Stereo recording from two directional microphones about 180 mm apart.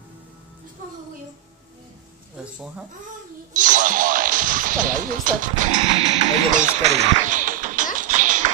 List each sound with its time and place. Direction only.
2.3 s speech: 5° right (ahead or behind)
3.5 s speech: 45° right (ahead or behind)
7.2 s music: 45° right (ahead or behind)